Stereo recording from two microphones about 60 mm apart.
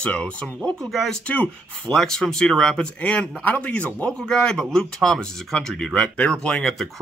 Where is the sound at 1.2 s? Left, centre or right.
Left.